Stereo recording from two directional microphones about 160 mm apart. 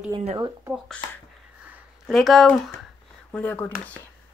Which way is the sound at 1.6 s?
5° right (ahead or behind).